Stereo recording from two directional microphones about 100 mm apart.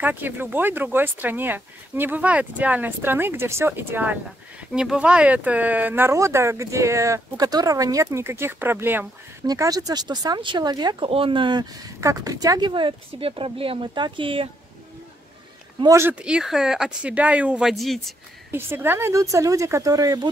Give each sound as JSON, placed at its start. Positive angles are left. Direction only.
{"t": 0.0, "sound": "speech", "side_deg": -20}
{"t": 4.7, "sound": "speech", "side_deg": -10}
{"t": 9.5, "sound": "speech", "side_deg": -40}
{"t": 11.1, "sound": "speech", "side_deg": -65}
{"t": 12.0, "sound": "speech", "side_deg": -35}
{"t": 16.0, "sound": "speech", "side_deg": -15}
{"t": 18.5, "sound": "speech", "side_deg": -20}